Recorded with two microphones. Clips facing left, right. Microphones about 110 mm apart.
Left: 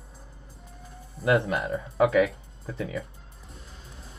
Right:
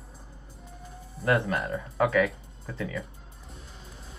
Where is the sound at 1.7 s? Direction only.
25° left (ahead or behind).